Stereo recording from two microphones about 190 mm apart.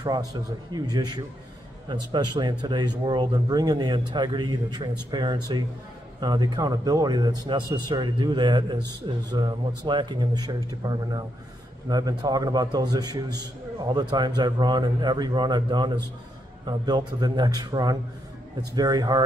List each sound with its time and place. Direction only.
0.0 s speech: 20° right (ahead or behind)